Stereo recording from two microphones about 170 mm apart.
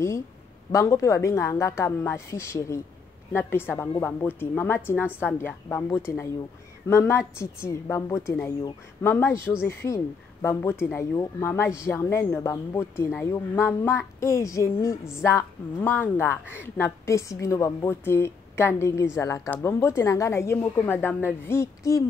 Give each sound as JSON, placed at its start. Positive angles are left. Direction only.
{"t": 0.7, "sound": "speech", "side_deg": 20}